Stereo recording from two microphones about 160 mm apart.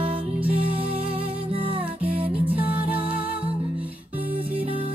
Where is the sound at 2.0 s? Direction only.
35° right (ahead or behind).